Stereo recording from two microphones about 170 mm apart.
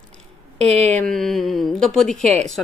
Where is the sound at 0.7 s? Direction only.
40° right (ahead or behind).